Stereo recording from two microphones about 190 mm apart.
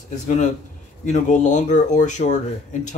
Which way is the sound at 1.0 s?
40° left (ahead or behind).